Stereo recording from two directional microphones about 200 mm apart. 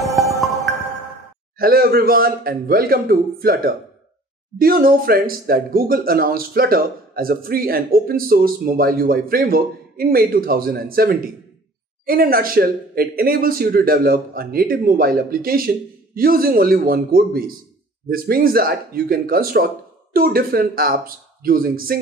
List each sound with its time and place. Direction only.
1.6 s speech: 50° right (ahead or behind)